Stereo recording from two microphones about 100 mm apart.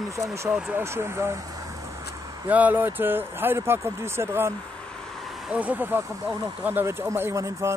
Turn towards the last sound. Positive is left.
turn(degrees=-30)  # may be behind; listen again after turning